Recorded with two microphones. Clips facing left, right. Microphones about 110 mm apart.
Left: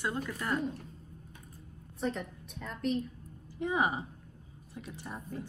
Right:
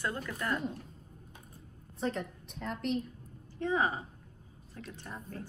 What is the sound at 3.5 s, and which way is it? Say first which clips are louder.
Speech: even; 15° left (ahead or behind).